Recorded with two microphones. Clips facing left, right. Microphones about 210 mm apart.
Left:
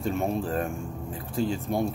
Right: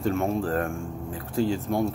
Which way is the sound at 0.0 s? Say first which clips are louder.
Right 2 dB; 15° left (ahead or behind).